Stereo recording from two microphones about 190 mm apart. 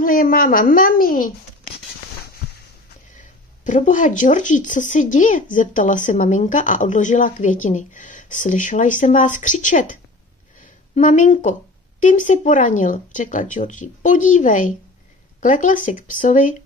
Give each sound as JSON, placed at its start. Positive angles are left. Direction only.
{"t": 0.0, "sound": "a woman's voice", "side_deg": 50}
{"t": 3.2, "sound": "speech", "side_deg": 40}
{"t": 11.0, "sound": "speech", "side_deg": 40}